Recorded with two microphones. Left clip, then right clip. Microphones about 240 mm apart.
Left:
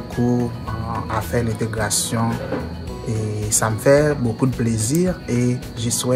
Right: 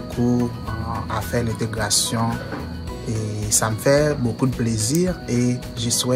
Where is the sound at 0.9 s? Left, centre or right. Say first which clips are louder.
Left 2 dB; centre.